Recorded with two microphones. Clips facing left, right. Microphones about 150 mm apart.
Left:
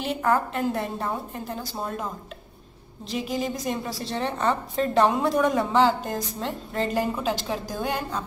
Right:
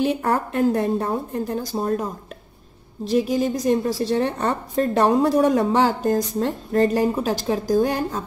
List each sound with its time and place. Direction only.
0.2 s speech: 35° right (ahead or behind)
3.1 s speech: 40° right (ahead or behind)